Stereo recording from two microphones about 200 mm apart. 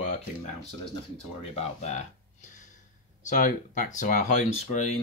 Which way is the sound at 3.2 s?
40° left (ahead or behind).